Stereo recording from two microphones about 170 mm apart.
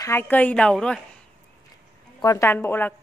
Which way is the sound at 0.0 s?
15° left (ahead or behind).